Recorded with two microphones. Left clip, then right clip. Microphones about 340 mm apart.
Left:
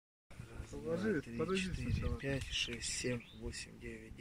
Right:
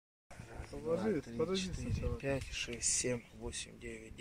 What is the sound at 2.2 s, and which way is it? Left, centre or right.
Speech, right.